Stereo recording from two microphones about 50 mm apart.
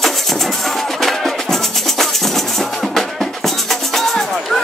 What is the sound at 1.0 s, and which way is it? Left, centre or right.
Music, centre.